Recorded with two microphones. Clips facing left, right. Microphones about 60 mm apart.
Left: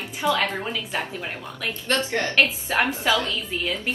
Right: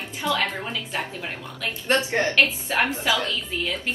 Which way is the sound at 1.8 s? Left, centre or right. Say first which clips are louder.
Right 2 dB; right.